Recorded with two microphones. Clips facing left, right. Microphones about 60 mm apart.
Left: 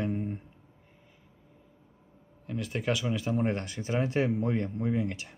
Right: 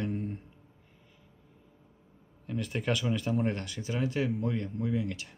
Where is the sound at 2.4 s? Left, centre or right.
Centre.